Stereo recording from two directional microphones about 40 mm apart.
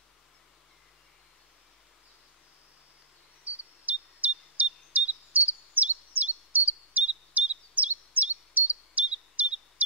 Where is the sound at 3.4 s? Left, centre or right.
Right.